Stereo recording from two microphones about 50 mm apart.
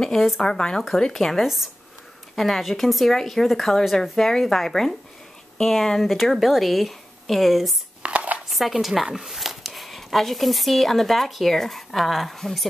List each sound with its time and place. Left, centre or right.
0.0 s a woman's voice: centre
8.0 s dishes: right
8.5 s a sound: centre
8.7 s speech: centre